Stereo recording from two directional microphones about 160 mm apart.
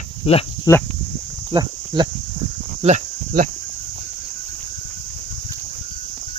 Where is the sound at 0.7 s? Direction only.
20° left (ahead or behind).